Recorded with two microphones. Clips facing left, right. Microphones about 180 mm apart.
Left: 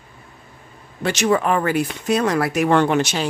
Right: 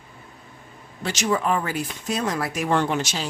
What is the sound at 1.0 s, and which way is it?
Speech, 60° left (ahead or behind).